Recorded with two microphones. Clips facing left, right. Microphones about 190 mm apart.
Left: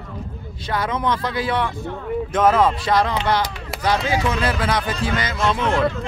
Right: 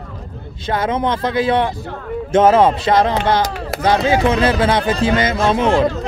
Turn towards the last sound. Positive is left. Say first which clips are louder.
# right 5 dB
turn(degrees=-30)  # may be behind; listen again after turning